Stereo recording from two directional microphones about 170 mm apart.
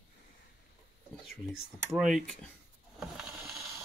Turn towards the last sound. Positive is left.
turn(degrees=0)  # may be behind; listen again after turning